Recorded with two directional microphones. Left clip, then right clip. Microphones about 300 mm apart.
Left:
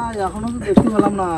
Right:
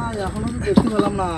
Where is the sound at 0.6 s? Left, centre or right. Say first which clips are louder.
Left 3 dB; centre.